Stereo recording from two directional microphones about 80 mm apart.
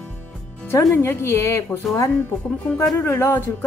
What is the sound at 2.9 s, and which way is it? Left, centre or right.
Speech, left.